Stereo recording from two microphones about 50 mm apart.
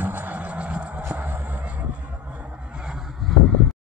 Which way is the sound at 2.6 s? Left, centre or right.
Centre.